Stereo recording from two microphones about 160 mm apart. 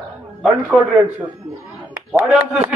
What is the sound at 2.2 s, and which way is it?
Speech, 5° right (ahead or behind).